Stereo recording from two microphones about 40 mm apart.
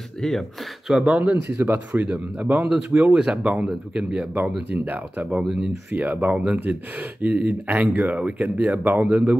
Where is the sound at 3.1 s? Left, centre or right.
Centre.